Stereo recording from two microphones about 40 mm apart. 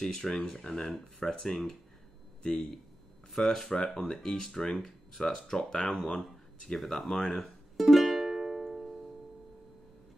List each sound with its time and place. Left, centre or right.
0.0 s speech: centre
3.3 s speech: centre
6.8 s music: centre